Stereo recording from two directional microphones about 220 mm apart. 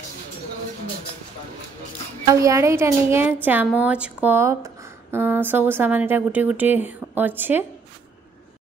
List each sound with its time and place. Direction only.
2.4 s a woman's voice: 15° right (ahead or behind)